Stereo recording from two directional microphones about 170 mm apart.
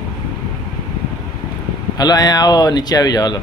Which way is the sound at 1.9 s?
25° left (ahead or behind).